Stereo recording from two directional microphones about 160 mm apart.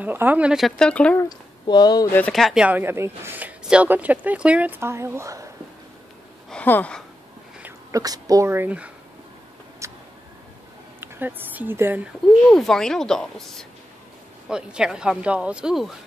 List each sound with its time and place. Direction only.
0.0 s speech: 10° right (ahead or behind); by 1.2 s 5° left (ahead or behind)
1.7 s speech: 25° left (ahead or behind)
2.1 s speech: 5° left (ahead or behind); by 5.5 s 20° right (ahead or behind)
6.5 s a sound: 10° left (ahead or behind)
7.6 s speech: 20° right (ahead or behind)
9.8 s a sound: 20° right (ahead or behind)
11.0 s speech: 10° right (ahead or behind)
12.4 s speech: centre (ahead or behind)